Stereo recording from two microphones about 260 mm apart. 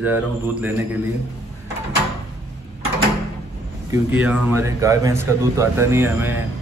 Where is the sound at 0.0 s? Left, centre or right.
Centre.